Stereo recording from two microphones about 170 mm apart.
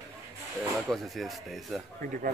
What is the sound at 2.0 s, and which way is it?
Speech, 55° right (ahead or behind).